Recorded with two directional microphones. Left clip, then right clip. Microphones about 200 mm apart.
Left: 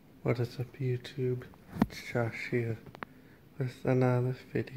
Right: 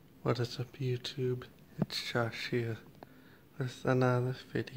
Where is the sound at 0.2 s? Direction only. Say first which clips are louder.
Left 1 dB; 5° right (ahead or behind).